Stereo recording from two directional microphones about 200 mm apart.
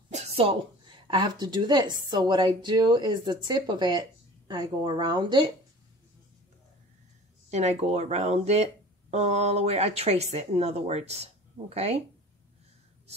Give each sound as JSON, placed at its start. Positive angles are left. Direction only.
{"t": 0.1, "sound": "a woman's voice", "side_deg": -30}
{"t": 7.4, "sound": "speech", "side_deg": -35}